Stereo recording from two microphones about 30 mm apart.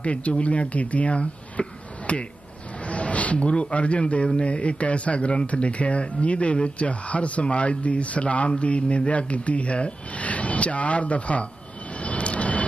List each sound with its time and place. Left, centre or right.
0.0 s speech: left
1.6 s speech: left
2.1 s speech: left
2.8 s a sound: left
3.7 s speech: left
5.5 s speech: left
11.9 s vehicle: left